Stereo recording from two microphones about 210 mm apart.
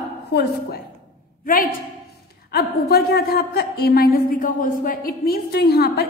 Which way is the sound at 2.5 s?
50° left (ahead or behind).